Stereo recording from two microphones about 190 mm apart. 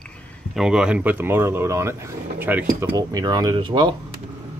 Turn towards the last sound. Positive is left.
turn(degrees=-25)  # may be behind; listen again after turning